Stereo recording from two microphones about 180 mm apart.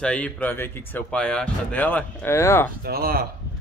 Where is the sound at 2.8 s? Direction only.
55° right (ahead or behind).